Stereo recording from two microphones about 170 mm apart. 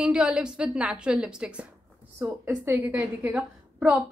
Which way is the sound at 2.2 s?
15° right (ahead or behind).